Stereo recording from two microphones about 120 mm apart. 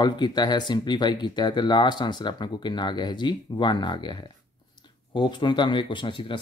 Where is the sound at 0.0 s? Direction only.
35° left (ahead or behind).